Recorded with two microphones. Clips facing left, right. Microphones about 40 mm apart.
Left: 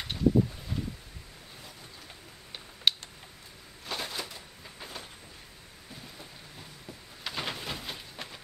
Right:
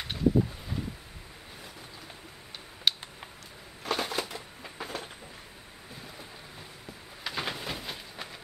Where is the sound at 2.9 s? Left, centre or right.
Centre.